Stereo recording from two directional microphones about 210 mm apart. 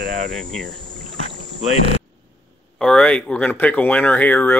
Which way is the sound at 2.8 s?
5° left (ahead or behind).